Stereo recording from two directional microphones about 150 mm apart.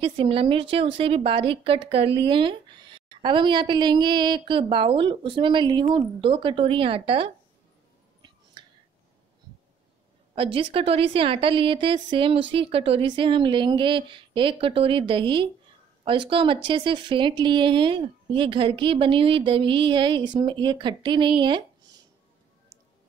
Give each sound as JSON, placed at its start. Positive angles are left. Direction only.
{"t": 0.0, "sound": "speech", "side_deg": -40}
{"t": 8.6, "sound": "a sound", "side_deg": -30}
{"t": 10.3, "sound": "speech", "side_deg": -40}